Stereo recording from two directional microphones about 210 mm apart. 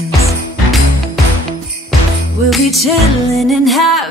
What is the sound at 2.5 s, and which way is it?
Music, centre (ahead or behind).